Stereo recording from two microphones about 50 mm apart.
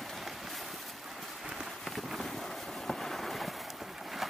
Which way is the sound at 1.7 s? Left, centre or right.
Centre.